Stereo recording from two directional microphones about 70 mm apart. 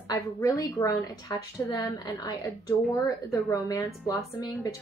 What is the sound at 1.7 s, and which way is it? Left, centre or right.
Speech, left.